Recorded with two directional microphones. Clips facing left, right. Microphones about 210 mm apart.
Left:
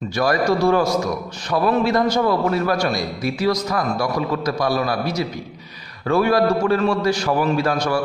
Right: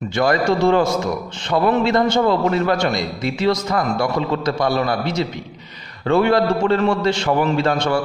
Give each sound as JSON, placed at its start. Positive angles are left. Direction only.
{"t": 0.1, "sound": "a man's voice", "side_deg": -25}